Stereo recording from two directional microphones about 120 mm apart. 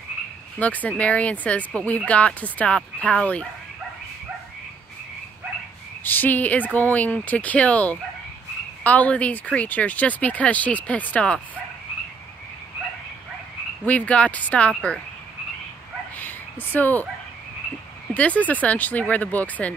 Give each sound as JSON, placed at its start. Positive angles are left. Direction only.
{"t": 0.6, "sound": "speech", "side_deg": 10}
{"t": 6.0, "sound": "speech", "side_deg": 15}
{"t": 13.8, "sound": "speech", "side_deg": 10}
{"t": 16.2, "sound": "a sound", "side_deg": 15}
{"t": 18.1, "sound": "speech", "side_deg": 10}